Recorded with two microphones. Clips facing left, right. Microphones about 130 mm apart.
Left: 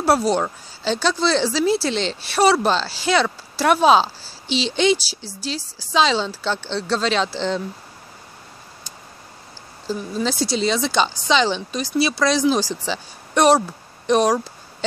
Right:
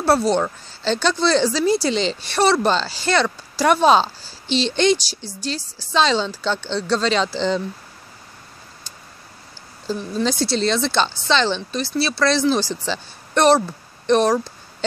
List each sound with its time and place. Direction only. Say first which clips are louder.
0.0 s speech: right 1 dB; 10° left (ahead or behind)
5.6 s a woman's voice: left 1 dB; 35° left (ahead or behind)
5.9 s speech: even; 5° left (ahead or behind)
9.8 s speech: right 1 dB; 5° left (ahead or behind)